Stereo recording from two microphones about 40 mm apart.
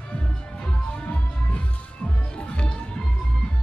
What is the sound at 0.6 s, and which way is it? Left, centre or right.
Music, left.